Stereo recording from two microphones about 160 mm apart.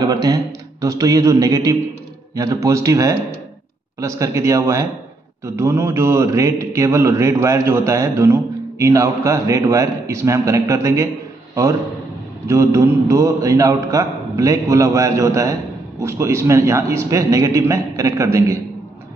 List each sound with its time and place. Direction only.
0.0 s mantra: 25° right (ahead or behind)
12.4 s mantra: 20° right (ahead or behind)